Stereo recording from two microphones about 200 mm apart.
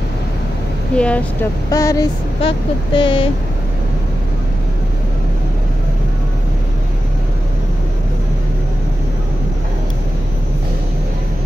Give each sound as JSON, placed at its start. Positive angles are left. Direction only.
{"t": 0.9, "sound": "speech", "side_deg": 5}
{"t": 1.7, "sound": "vehicle", "side_deg": 15}
{"t": 2.4, "sound": "speech", "side_deg": 25}